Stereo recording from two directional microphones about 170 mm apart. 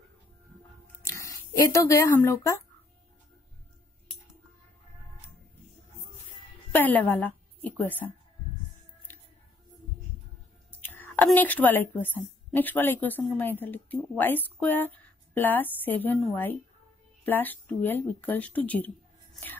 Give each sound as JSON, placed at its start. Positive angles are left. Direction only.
{"t": 1.0, "sound": "speech", "side_deg": 15}
{"t": 6.7, "sound": "a woman's voice", "side_deg": 10}
{"t": 9.1, "sound": "scissors", "side_deg": 10}
{"t": 10.7, "sound": "a sound", "side_deg": 10}
{"t": 11.2, "sound": "speech", "side_deg": 10}